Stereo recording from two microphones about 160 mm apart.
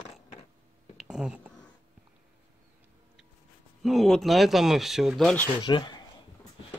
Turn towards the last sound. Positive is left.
turn(degrees=30)  # may be behind; listen again after turning